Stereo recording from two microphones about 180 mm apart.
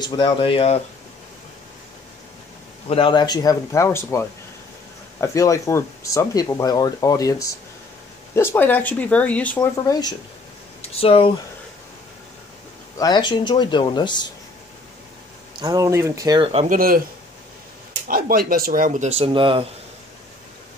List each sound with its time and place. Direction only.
0.0 s speech: 25° left (ahead or behind)
2.9 s speech: 30° left (ahead or behind); by 9.6 s 10° left (ahead or behind)
9.6 s speech: 20° left (ahead or behind)
10.8 s speech: 35° left (ahead or behind)
12.9 s speech: 20° left (ahead or behind)
15.6 s speech: 20° right (ahead or behind)
16.5 s speech: 50° right (ahead or behind)
18.0 s speech: 55° right (ahead or behind); by 19.6 s 30° right (ahead or behind)